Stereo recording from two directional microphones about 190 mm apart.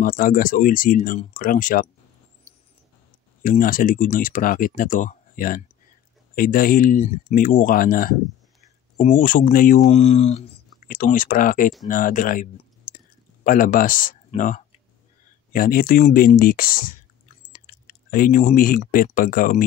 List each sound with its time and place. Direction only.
0.0 s speech: 45° left (ahead or behind)
3.4 s speech: 45° left (ahead or behind)
9.8 s speech: 35° left (ahead or behind)
10.9 s speech: 45° left (ahead or behind)
18.1 s speech: 45° left (ahead or behind)